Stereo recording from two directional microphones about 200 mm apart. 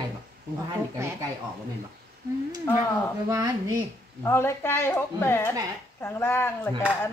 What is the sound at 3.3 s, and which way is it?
Speech, 20° right (ahead or behind).